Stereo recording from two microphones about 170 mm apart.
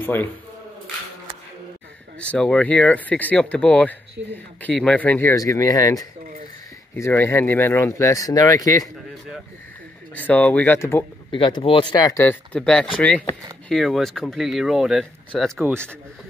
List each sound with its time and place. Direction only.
0.0 s speech: 10° left (ahead or behind)
2.1 s speech: 5° left (ahead or behind)
10.1 s speech: 10° left (ahead or behind)
11.3 s speech: 30° left (ahead or behind); by 15.6 s centre (ahead or behind)